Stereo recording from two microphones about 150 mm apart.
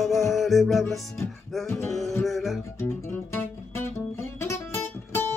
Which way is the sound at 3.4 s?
15° left (ahead or behind).